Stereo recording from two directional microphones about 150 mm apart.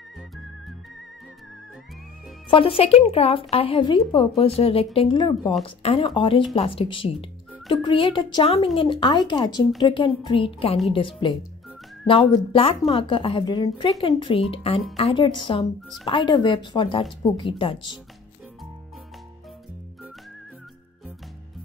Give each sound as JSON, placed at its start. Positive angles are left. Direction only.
{"t": 2.5, "sound": "speech", "side_deg": 40}